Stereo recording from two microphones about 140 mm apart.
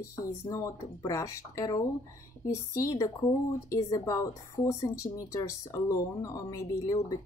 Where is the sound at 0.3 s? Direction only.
25° left (ahead or behind).